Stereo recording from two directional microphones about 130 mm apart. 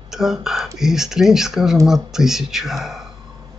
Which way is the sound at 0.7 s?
5° right (ahead or behind).